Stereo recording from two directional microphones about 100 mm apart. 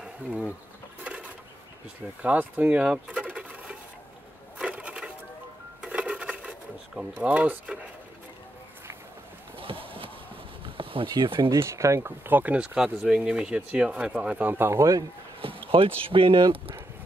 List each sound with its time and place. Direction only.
0.0 s insect: 5° right (ahead or behind)
2.2 s speech: 15° right (ahead or behind)
4.6 s a sound: 10° right (ahead or behind)
7.0 s speech: 15° right (ahead or behind)
9.6 s a sound: 65° right (ahead or behind)
10.8 s speech: 65° right (ahead or behind)
11.4 s speech: 25° right (ahead or behind)
15.7 s speech: 65° right (ahead or behind)